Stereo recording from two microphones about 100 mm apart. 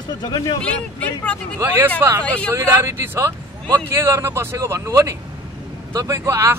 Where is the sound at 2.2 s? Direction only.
15° left (ahead or behind).